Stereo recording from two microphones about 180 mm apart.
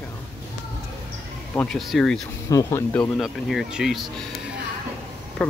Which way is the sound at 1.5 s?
5° left (ahead or behind).